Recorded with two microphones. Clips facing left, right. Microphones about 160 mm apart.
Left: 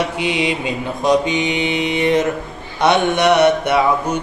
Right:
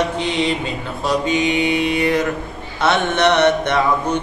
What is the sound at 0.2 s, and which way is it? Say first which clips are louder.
Mantra: even; 10° left (ahead or behind).